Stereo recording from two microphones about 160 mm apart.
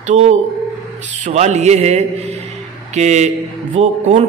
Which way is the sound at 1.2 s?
45° right (ahead or behind).